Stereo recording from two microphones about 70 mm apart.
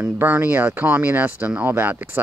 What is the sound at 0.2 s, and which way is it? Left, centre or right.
Speech, right.